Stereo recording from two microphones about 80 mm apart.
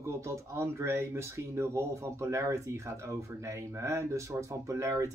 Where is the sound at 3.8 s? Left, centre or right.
Right.